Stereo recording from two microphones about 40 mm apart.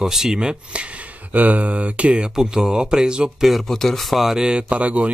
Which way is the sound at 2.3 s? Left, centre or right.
Centre.